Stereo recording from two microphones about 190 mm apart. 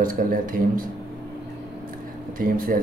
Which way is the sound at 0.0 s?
45° right (ahead or behind).